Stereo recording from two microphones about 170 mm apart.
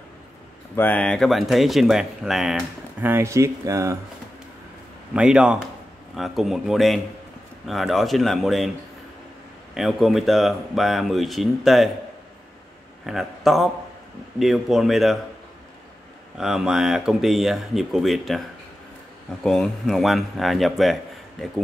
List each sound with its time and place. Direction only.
0.7 s speech: 10° left (ahead or behind)
3.0 s speech: 15° right (ahead or behind)
5.1 s speech: 5° right (ahead or behind)
9.8 s speech: centre (ahead or behind)
13.0 s a man's voice: centre (ahead or behind)
16.3 s speech: centre (ahead or behind)
19.4 s speech: centre (ahead or behind)